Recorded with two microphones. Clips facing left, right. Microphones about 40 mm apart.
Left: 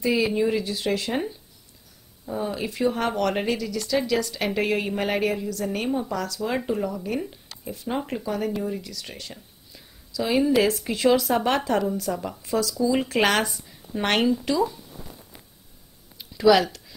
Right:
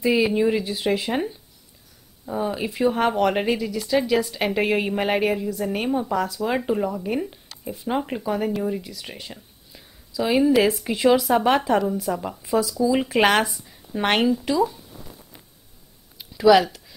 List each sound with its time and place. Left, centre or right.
0.0 s speech: centre
7.4 s a sound: centre
7.7 s a woman's voice: centre
16.2 s speech: centre